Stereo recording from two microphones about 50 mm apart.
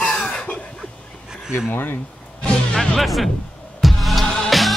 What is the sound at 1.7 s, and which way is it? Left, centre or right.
Speech, left.